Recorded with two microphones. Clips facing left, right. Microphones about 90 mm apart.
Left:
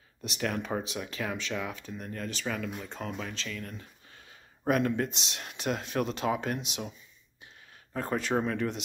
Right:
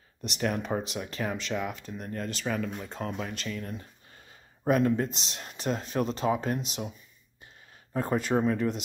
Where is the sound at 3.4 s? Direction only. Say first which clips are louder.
Right 3 dB; 20° right (ahead or behind).